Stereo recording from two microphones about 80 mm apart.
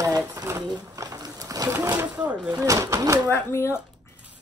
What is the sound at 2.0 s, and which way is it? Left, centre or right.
Speech, right.